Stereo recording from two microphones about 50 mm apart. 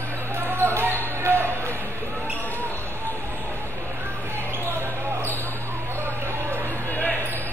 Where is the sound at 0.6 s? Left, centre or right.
Right.